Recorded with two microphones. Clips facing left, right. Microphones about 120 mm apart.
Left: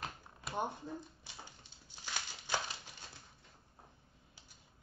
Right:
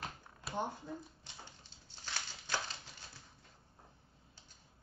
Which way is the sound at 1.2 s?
10° left (ahead or behind).